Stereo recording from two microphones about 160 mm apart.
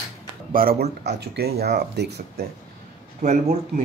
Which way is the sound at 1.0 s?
90° right.